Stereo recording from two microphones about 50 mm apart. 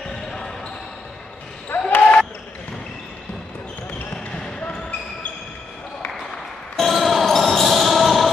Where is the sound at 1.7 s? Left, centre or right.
Left.